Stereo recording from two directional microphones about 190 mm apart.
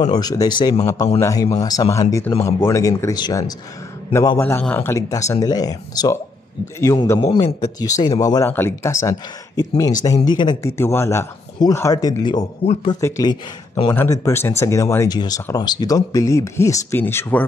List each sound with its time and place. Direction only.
0.0 s speech: 20° left (ahead or behind)
7.2 s speech: 25° left (ahead or behind); by 17.5 s 10° left (ahead or behind)